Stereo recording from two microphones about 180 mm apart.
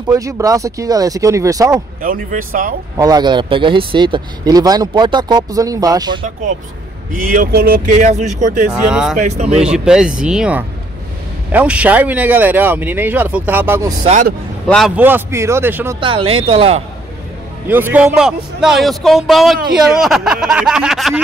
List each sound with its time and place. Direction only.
0.1 s speech: 20° right (ahead or behind)
2.0 s speech: 50° right (ahead or behind)
3.0 s speech: 20° right (ahead or behind)
7.1 s speech: 50° right (ahead or behind)
8.7 s a man's voice: 5° right (ahead or behind)
9.1 s speech: 40° right (ahead or behind)
9.6 s a man's voice: 5° right (ahead or behind)
14.0 s speech: 40° right (ahead or behind)
15.0 s speech: 10° right (ahead or behind)
16.0 s speech: 30° right (ahead or behind)
17.6 s a man's voice: 10° right (ahead or behind)